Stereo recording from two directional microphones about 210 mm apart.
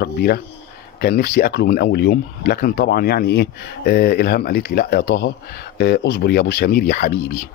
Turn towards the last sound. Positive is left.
turn(degrees=45)  # may be behind; listen again after turning